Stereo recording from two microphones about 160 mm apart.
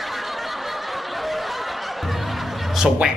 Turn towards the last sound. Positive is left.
turn(degrees=-5)  # may be behind; listen again after turning